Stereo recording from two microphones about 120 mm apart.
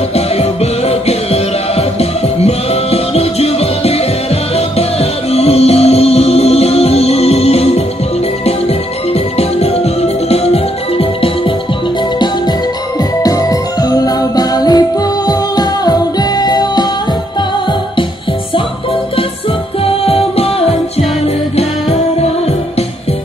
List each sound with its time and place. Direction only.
0.1 s music: 60° left (ahead or behind)
13.2 s music: 30° left (ahead or behind)
19.8 s music: 55° left (ahead or behind)